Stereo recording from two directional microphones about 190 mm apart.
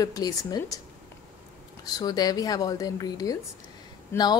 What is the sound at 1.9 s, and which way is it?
A woman's voice, 20° left (ahead or behind).